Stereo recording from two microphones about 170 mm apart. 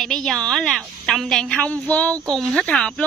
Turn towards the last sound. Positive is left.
turn(degrees=5)  # may be behind; listen again after turning